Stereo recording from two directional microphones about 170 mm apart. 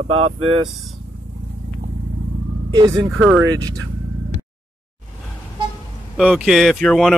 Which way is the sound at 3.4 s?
20° right (ahead or behind).